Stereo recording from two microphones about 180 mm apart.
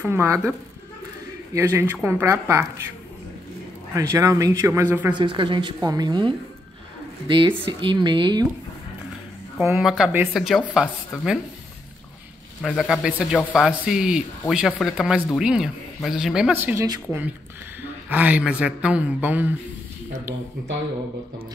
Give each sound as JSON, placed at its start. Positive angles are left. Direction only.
{"t": 0.0, "sound": "a man's voice", "side_deg": -15}
{"t": 3.9, "sound": "a man's voice", "side_deg": -15}
{"t": 5.1, "sound": "speech", "side_deg": -25}
{"t": 9.8, "sound": "speech", "side_deg": 0}
{"t": 12.6, "sound": "speech", "side_deg": 0}
{"t": 17.8, "sound": "a man's voice", "side_deg": -10}